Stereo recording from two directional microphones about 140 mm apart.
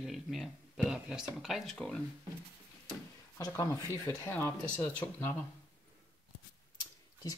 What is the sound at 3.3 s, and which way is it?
Speech, 25° left (ahead or behind).